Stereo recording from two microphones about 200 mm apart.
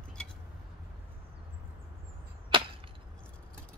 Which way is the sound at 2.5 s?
25° right (ahead or behind).